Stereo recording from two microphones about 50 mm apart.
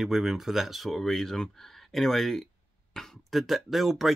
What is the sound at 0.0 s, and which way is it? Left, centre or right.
Speech, centre.